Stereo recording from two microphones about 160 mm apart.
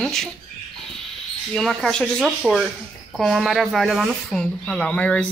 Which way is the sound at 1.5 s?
Centre (ahead or behind).